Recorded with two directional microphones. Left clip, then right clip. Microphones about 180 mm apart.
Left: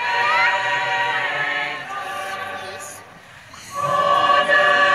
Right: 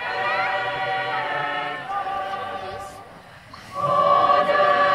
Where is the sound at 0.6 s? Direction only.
10° left (ahead or behind).